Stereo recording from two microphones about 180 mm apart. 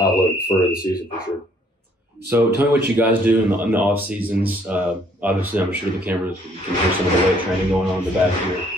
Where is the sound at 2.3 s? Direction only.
10° right (ahead or behind).